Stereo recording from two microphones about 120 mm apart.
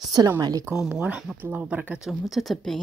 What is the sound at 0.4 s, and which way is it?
Speech, 35° right (ahead or behind).